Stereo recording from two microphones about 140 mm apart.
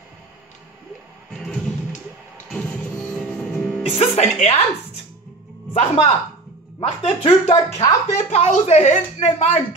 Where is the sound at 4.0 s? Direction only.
50° left (ahead or behind).